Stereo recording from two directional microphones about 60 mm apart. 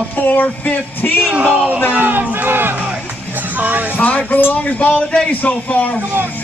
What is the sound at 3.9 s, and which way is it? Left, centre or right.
Speech, left.